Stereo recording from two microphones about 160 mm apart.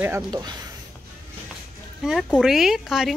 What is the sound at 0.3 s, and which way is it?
Speech, 25° right (ahead or behind).